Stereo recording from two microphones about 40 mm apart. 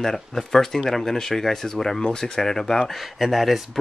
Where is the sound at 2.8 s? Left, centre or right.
Centre.